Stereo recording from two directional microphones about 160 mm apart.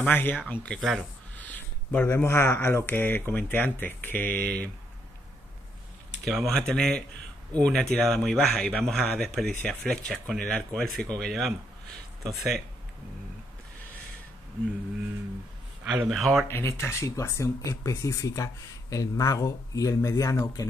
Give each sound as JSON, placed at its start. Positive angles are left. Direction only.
{"t": 0.0, "sound": "speech", "side_deg": 10}
{"t": 6.2, "sound": "speech", "side_deg": 0}
{"t": 15.9, "sound": "speech", "side_deg": -5}
{"t": 16.4, "sound": "speech", "side_deg": 15}